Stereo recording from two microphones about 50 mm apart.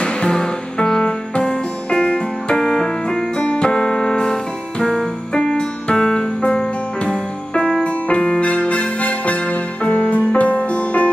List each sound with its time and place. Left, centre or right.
0.0 s music: centre
3.3 s music: centre